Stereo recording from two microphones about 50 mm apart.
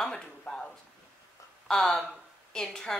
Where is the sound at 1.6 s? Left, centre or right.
Centre.